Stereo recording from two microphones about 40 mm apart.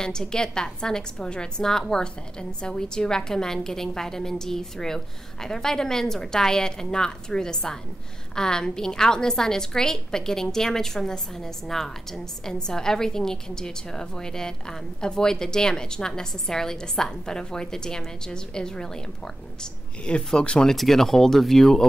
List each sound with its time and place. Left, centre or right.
0.0 s a woman's voice: centre
20.7 s a woman's voice: centre